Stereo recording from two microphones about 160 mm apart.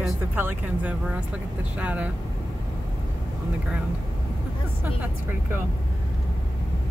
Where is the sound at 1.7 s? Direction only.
10° right (ahead or behind).